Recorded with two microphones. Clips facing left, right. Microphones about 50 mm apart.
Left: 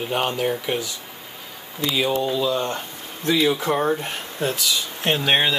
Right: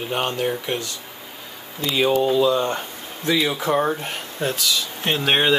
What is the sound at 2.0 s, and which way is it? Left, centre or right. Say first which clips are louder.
Speech: right 7 dB; centre.